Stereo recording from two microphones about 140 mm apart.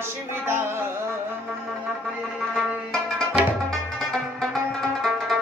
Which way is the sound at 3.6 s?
5° left (ahead or behind).